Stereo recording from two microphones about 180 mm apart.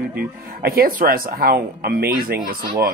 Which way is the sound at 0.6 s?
55° right (ahead or behind).